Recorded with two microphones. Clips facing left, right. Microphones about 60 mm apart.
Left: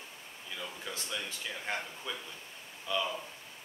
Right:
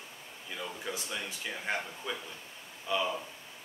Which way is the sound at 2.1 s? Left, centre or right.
Centre.